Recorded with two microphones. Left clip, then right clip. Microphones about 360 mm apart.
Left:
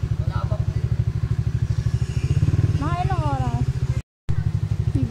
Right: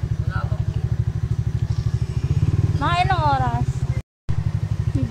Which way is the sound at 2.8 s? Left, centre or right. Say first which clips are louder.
Right 8 dB; right.